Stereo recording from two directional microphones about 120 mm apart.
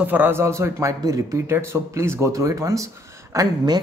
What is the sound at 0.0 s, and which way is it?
A man's voice, 15° right (ahead or behind).